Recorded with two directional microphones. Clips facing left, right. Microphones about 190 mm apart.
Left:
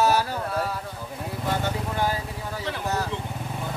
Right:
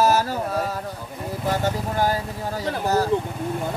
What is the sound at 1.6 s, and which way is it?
Vehicle, 40° right (ahead or behind).